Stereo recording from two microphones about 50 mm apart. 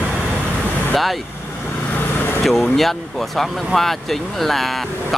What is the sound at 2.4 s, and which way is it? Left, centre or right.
Speech, centre.